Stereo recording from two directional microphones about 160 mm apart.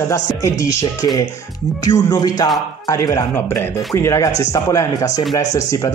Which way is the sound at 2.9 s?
20° left (ahead or behind).